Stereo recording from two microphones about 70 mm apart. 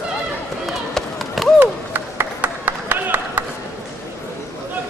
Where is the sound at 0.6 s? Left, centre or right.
Centre.